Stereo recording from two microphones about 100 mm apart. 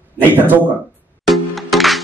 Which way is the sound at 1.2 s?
Centre (ahead or behind).